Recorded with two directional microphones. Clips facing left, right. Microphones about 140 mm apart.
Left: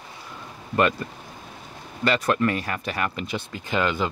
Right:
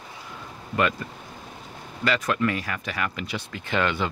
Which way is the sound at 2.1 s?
35° left (ahead or behind).